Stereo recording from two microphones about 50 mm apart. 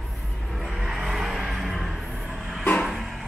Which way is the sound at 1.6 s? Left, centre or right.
Centre.